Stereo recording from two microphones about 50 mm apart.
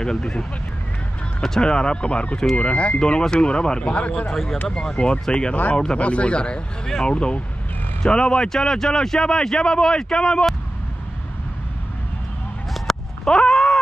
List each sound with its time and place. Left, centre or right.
0.0 s speech: centre
4.3 s speech: centre
12.8 s a sound: centre